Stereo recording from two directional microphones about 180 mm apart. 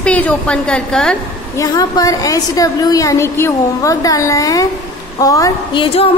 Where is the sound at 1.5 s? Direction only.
20° left (ahead or behind).